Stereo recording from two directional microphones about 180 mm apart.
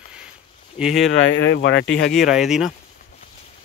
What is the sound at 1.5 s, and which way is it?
Speech, 75° left (ahead or behind).